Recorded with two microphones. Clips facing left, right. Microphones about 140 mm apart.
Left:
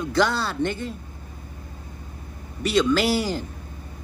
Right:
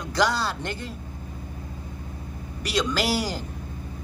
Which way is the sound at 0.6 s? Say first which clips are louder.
Left 8 dB; 55° left (ahead or behind).